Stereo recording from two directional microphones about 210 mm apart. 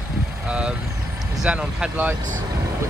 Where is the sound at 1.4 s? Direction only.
5° right (ahead or behind).